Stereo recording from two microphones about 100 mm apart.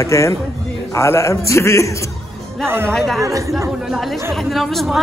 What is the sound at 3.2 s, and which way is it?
Speech, 30° right (ahead or behind).